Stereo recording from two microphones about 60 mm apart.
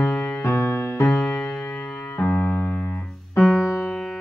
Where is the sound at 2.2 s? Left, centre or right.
Left.